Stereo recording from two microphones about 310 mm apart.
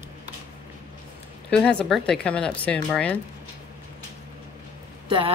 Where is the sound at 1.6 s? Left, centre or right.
Centre.